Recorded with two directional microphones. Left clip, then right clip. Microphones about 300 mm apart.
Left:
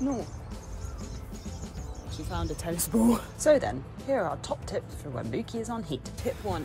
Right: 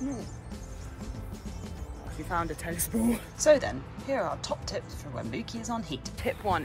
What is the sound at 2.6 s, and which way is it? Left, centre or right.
Speech, centre.